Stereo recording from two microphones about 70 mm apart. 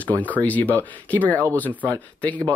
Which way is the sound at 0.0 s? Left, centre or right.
Left.